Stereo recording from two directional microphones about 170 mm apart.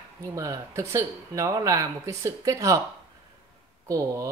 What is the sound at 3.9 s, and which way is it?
Speech, 20° right (ahead or behind).